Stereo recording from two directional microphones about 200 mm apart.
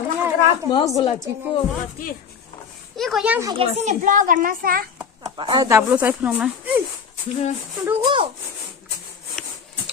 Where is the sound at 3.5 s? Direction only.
35° right (ahead or behind).